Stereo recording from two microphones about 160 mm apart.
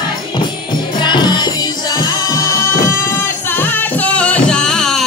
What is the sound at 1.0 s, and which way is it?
Music, 25° left (ahead or behind).